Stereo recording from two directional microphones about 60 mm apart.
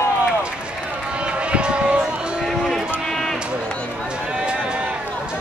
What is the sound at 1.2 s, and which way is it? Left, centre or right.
Run, centre.